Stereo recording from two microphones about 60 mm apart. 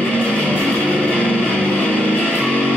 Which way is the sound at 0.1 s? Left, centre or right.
Centre.